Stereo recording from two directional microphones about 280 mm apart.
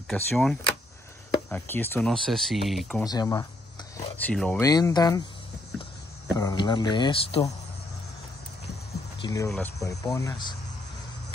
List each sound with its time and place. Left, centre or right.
0.1 s speech: centre
3.0 s speech: centre
6.3 s speech: centre
9.2 s speech: centre